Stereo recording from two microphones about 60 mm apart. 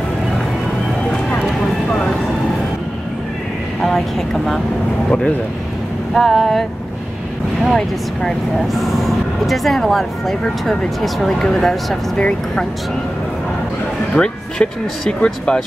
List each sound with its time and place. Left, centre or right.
3.8 s vehicle: centre
6.1 s speech: centre
7.6 s speech: centre
12.2 s speech: centre
14.1 s speech: centre